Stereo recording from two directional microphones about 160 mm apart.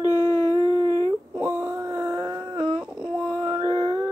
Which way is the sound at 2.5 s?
30° right (ahead or behind).